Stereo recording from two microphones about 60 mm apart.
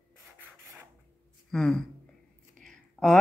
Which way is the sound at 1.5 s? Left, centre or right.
Centre.